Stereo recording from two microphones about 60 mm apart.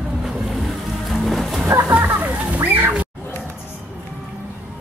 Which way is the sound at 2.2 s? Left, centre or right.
Right.